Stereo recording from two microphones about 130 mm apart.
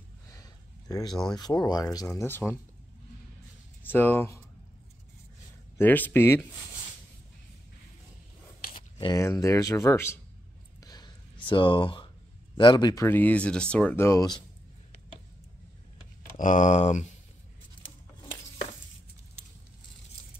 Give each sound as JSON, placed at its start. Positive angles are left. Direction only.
{"t": 0.3, "sound": "a sound", "side_deg": 25}
{"t": 1.3, "sound": "speech", "side_deg": 30}
{"t": 3.8, "sound": "speech", "side_deg": 15}
{"t": 5.8, "sound": "speech", "side_deg": 15}
{"t": 8.9, "sound": "a sound", "side_deg": 35}
{"t": 9.2, "sound": "speech", "side_deg": 25}
{"t": 10.8, "sound": "a sound", "side_deg": 30}
{"t": 12.5, "sound": "speech", "side_deg": 35}
{"t": 13.0, "sound": "speech", "side_deg": 15}
{"t": 13.9, "sound": "speech", "side_deg": 20}
{"t": 16.3, "sound": "speech", "side_deg": 75}